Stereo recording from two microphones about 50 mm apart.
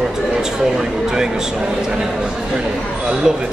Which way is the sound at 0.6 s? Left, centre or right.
Centre.